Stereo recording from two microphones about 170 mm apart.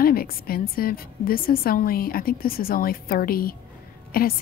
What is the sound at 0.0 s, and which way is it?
A woman's voice, 60° left (ahead or behind).